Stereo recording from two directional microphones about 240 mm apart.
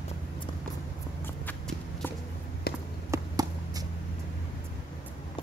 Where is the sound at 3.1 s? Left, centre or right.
Centre.